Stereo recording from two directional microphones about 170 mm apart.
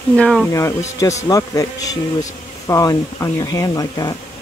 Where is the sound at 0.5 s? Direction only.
15° left (ahead or behind).